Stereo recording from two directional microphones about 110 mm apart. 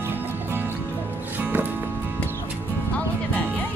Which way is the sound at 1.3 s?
15° right (ahead or behind).